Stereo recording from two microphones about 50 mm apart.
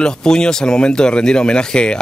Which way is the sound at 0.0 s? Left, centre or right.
Centre.